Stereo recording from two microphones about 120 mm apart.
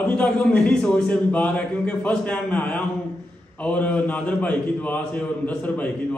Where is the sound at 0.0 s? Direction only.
10° left (ahead or behind).